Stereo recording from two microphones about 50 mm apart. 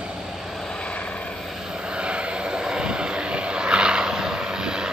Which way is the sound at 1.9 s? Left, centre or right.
Centre.